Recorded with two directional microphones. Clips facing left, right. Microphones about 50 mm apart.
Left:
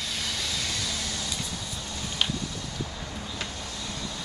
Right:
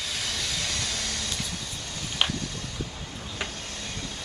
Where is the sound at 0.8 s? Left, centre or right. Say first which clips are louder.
Even; right.